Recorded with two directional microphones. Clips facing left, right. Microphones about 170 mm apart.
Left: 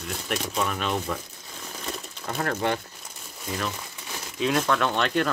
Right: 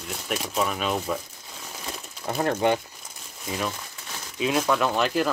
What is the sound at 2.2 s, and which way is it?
Speech, 15° right (ahead or behind).